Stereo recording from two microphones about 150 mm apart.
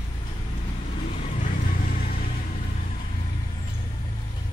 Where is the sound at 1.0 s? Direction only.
50° left (ahead or behind); by 2.1 s 65° left (ahead or behind).